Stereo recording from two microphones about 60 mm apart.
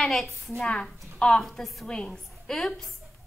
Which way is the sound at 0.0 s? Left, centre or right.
Centre.